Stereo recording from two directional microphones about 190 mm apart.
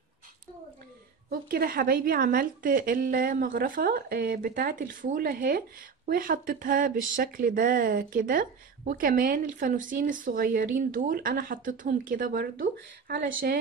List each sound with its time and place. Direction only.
1.3 s a woman's voice: 50° right (ahead or behind)
13.1 s speech: 65° right (ahead or behind)